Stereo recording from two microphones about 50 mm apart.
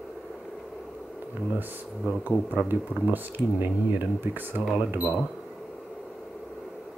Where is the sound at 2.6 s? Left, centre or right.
Right.